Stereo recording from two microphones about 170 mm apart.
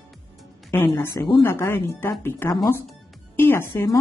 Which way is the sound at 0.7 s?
15° left (ahead or behind).